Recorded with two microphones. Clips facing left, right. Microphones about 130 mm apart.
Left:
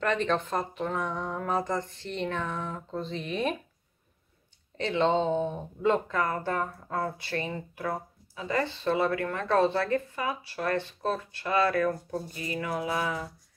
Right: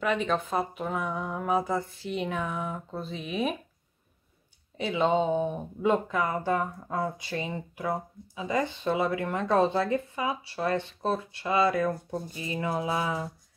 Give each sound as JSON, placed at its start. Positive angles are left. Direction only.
{"t": 0.0, "sound": "speech", "side_deg": -5}
{"t": 4.7, "sound": "speech", "side_deg": -10}